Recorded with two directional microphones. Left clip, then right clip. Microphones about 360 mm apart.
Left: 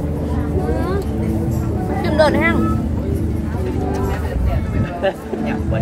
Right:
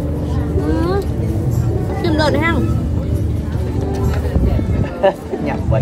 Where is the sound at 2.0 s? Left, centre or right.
Centre.